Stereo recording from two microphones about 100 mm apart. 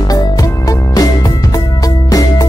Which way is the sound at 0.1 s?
35° left (ahead or behind).